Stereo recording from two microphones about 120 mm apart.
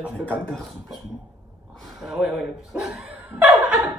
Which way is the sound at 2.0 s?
5° right (ahead or behind).